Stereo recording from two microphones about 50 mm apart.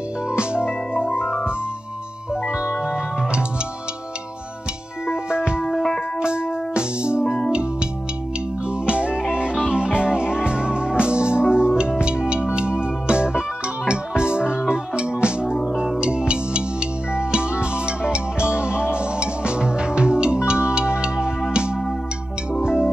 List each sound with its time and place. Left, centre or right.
0.3 s music: centre
2.5 s music: centre
5.0 s music: centre
5.7 s music: centre
6.2 s music: centre
8.8 s music: right